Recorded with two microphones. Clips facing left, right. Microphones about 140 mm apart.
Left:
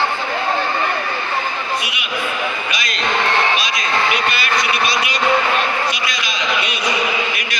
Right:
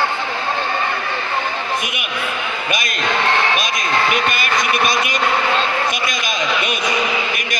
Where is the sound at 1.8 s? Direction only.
50° right (ahead or behind).